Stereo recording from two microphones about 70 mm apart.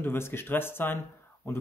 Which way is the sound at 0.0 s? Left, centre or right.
Left.